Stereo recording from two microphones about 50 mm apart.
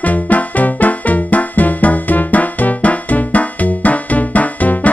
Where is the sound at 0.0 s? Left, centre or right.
Left.